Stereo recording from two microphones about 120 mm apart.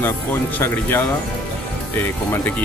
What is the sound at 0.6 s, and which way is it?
Speech, 20° left (ahead or behind).